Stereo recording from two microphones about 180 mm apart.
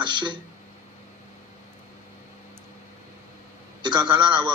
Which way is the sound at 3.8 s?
25° right (ahead or behind).